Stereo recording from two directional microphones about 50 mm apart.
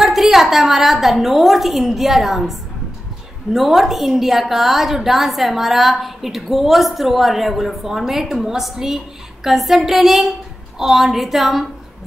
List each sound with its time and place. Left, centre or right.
0.0 s a woman's voice: centre
3.5 s a woman's voice: centre